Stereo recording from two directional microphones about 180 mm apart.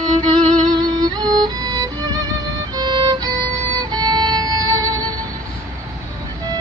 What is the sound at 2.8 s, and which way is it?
Violin, 25° right (ahead or behind).